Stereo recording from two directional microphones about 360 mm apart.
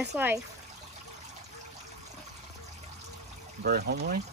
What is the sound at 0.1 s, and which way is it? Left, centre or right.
Speech, centre.